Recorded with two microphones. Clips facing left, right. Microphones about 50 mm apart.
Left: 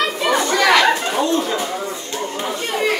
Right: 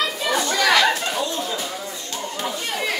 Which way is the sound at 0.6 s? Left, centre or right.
Left.